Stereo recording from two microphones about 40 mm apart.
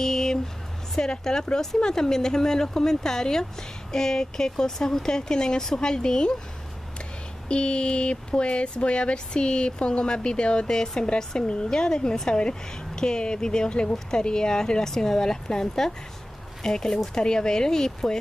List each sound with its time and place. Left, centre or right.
0.0 s a sound: centre
0.9 s speech: centre
7.4 s speech: left